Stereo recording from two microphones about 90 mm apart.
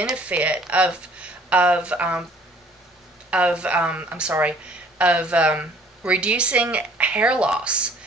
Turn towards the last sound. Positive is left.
turn(degrees=-10)  # may be behind; listen again after turning